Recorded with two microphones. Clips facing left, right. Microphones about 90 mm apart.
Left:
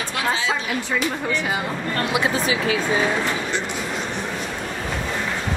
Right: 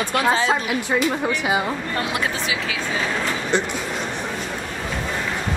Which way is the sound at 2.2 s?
30° left (ahead or behind).